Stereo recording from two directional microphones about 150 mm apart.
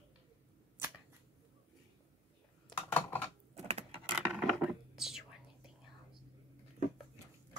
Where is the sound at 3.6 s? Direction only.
45° right (ahead or behind).